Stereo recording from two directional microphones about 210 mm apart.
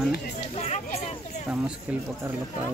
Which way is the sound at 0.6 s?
30° left (ahead or behind).